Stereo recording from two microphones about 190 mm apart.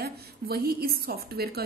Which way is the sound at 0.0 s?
55° right (ahead or behind).